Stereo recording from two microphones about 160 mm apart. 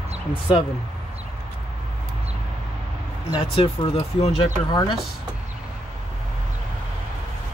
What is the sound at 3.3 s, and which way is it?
Speech, 35° left (ahead or behind).